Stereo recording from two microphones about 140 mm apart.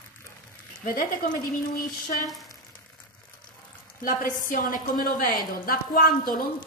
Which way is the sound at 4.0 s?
75° left (ahead or behind).